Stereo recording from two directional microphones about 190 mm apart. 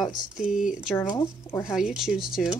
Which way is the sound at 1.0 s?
20° left (ahead or behind).